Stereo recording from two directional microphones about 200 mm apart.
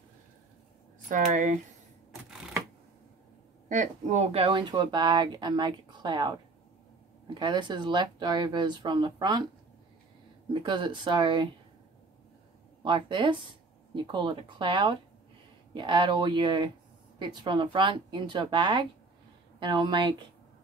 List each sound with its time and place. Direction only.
1.0 s speech: 40° right (ahead or behind)
3.6 s speech: 40° right (ahead or behind); by 6.3 s 20° right (ahead or behind)
7.3 s speech: 20° right (ahead or behind)
10.5 s speech: 25° right (ahead or behind)
12.8 s speech: 25° right (ahead or behind)